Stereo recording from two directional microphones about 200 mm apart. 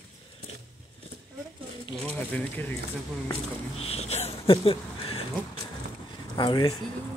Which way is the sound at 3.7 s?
30° left (ahead or behind).